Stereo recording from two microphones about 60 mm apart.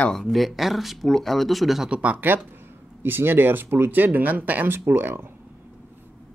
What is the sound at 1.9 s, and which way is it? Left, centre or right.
Speech, right.